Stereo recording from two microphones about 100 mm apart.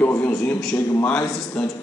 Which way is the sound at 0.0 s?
20° left (ahead or behind).